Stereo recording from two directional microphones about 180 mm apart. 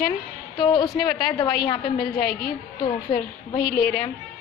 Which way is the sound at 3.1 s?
50° left (ahead or behind).